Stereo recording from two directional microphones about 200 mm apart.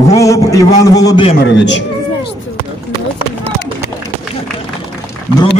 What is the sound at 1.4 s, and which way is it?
Speech, 60° left (ahead or behind).